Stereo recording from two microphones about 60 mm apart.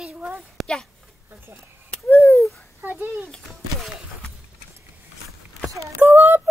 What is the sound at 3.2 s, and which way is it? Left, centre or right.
Speech, centre.